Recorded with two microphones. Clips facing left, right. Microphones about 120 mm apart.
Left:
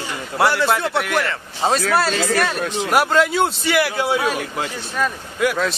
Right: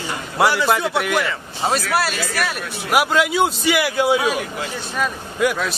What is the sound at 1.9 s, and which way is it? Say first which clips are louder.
Speech: left 3 dB; 25° left (ahead or behind).